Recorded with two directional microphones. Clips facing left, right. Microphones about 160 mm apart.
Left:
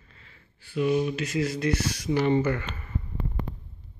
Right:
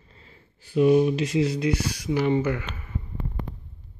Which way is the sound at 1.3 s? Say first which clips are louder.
Left 1 dB; 15° right (ahead or behind).